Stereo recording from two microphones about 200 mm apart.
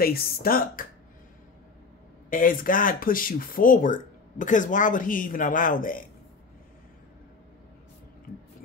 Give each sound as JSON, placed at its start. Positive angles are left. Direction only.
{"t": 0.0, "sound": "speech", "side_deg": 50}
{"t": 2.2, "sound": "speech", "side_deg": 45}
{"t": 8.3, "sound": "a sound", "side_deg": 45}